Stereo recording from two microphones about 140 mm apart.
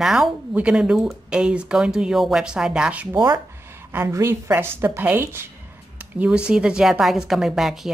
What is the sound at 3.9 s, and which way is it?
A woman's voice, 15° right (ahead or behind).